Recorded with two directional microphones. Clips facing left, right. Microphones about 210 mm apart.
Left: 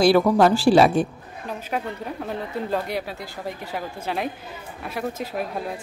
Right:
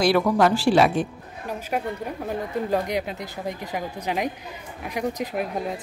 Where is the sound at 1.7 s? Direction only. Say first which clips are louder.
Right 1 dB; 10° right (ahead or behind).